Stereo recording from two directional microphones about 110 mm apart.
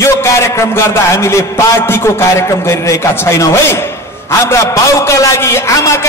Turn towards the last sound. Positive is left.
turn(degrees=25)  # may be behind; listen again after turning